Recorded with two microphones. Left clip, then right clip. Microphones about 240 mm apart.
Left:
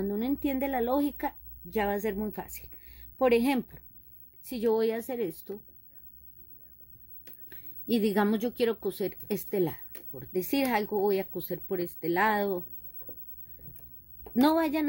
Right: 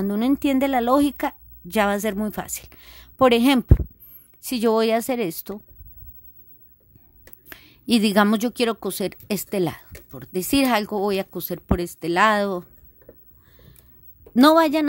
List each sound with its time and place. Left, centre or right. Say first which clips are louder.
0.0 s a woman's voice: right 9 dB; right
7.4 s a woman's voice: right 7 dB; right
14.3 s a woman's voice: right 10 dB; right